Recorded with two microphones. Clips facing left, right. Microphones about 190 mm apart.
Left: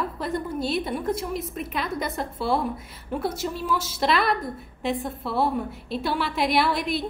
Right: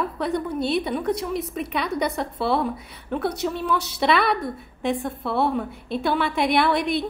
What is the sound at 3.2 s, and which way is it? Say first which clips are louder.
Speech: right 3 dB; 65° right (ahead or behind).